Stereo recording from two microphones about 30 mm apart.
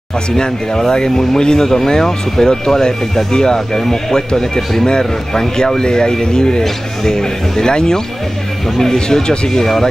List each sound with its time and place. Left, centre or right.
0.4 s speech: left